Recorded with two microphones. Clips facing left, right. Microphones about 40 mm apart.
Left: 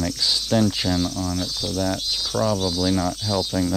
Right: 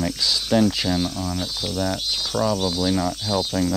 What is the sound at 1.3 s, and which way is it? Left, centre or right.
Speech, centre.